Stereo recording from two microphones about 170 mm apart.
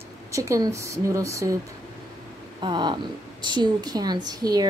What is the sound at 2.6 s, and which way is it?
A woman's voice, 25° right (ahead or behind).